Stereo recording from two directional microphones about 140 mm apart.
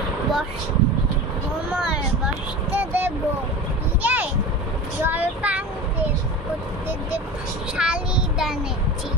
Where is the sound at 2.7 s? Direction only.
15° right (ahead or behind).